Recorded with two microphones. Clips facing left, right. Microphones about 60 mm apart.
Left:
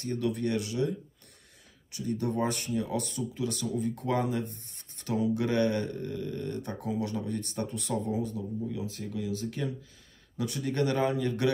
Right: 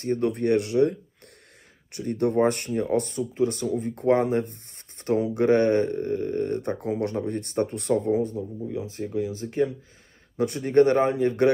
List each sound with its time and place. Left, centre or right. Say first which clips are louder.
0.0 s speech: right 6 dB; right
8.4 s speech: right 4 dB; right